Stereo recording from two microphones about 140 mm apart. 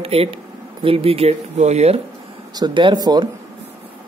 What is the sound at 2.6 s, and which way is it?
Speech, 30° right (ahead or behind).